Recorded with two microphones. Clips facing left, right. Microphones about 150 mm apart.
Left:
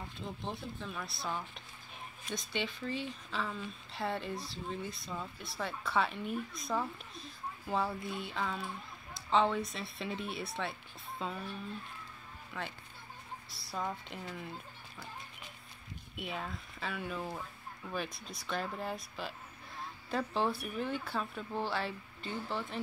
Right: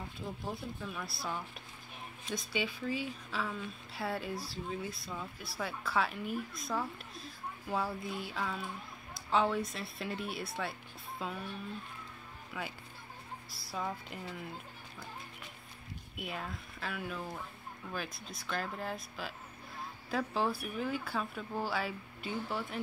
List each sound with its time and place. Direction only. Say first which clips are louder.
0.4 s speech: even; 5° right (ahead or behind)
12.6 s speech: even; 5° right (ahead or behind)
16.2 s speech: left 1 dB; centre (ahead or behind)